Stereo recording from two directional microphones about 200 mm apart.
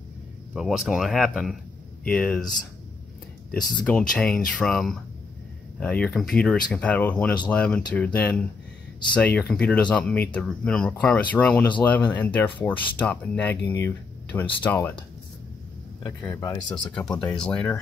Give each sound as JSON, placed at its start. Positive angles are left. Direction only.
{"t": 0.6, "sound": "speech", "side_deg": 0}
{"t": 4.1, "sound": "speech", "side_deg": 5}
{"t": 16.0, "sound": "speech", "side_deg": 10}
{"t": 17.2, "sound": "speech", "side_deg": 5}